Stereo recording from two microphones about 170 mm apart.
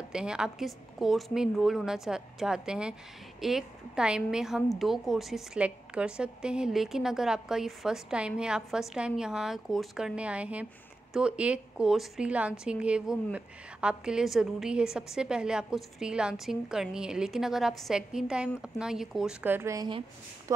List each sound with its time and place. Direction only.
0.1 s a woman's voice: 5° right (ahead or behind)